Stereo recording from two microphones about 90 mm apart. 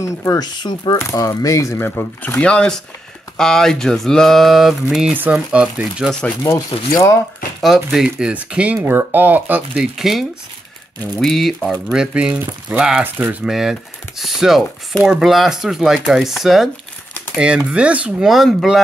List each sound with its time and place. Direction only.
0.0 s speech: 35° left (ahead or behind)
0.4 s speech: 50° left (ahead or behind)
1.9 s speech: 25° left (ahead or behind)
2.4 s speech: 10° left (ahead or behind)
5.1 s speech: 20° right (ahead or behind)
6.5 s speech: 35° left (ahead or behind)
7.6 s speech: 5° right (ahead or behind); by 9.6 s 20° right (ahead or behind)
9.8 s speech: 5° right (ahead or behind)
11.9 s speech: 10° right (ahead or behind)
13.0 s speech: 20° right (ahead or behind)
13.5 s speech: 5° right (ahead or behind)
17.6 s speech: 15° right (ahead or behind)
18.2 s speech: centre (ahead or behind)